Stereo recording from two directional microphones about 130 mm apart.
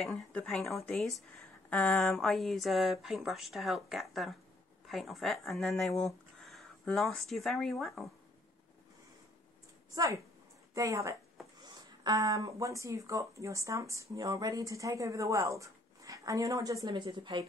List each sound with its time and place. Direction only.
0.0 s speech: 5° left (ahead or behind)
9.9 s speech: 25° right (ahead or behind)